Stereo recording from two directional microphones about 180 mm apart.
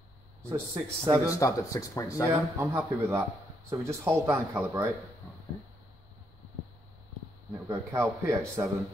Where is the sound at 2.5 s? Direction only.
15° right (ahead or behind).